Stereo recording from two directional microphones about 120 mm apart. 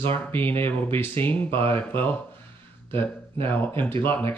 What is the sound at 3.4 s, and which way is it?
Speech, 15° left (ahead or behind).